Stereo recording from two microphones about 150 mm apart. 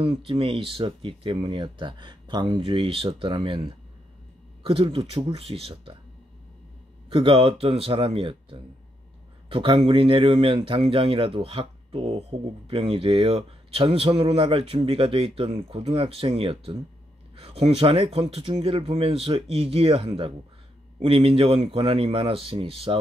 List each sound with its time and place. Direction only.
0.0 s speech: 40° right (ahead or behind)
7.1 s speech: 35° right (ahead or behind)